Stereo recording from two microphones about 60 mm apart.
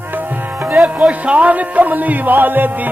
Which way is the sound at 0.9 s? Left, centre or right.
Right.